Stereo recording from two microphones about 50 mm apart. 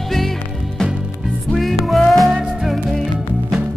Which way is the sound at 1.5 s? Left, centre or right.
Centre.